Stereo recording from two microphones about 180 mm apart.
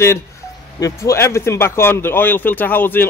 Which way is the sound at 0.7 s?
20° left (ahead or behind).